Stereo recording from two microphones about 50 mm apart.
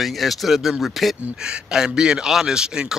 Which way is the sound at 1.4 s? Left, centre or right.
Centre.